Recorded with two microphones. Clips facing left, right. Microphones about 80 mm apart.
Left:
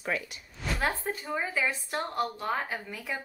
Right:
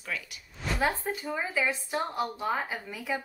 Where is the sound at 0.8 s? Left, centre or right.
Centre.